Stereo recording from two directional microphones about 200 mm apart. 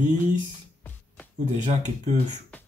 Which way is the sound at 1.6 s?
35° right (ahead or behind).